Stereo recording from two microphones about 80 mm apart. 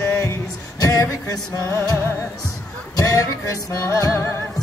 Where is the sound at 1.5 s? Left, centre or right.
Left.